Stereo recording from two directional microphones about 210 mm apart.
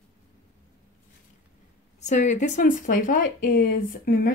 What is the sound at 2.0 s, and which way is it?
Speech, 35° left (ahead or behind).